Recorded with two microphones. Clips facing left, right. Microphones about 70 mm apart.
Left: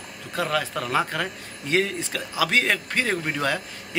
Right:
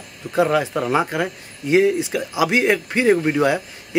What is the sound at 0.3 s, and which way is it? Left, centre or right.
Speech, right.